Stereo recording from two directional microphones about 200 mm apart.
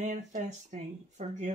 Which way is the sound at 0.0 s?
40° right (ahead or behind).